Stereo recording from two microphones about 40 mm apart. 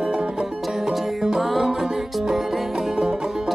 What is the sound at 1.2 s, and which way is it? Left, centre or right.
Music, centre.